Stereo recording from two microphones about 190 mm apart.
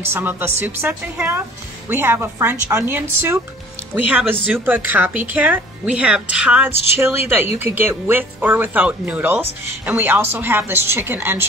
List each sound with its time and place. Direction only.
0.1 s speech: 10° right (ahead or behind)